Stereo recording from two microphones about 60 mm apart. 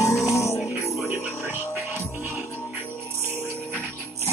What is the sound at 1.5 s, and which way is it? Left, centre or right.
Music, left.